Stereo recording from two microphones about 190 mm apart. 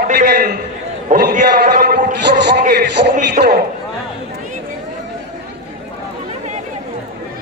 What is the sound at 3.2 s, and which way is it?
Speech, 50° right (ahead or behind).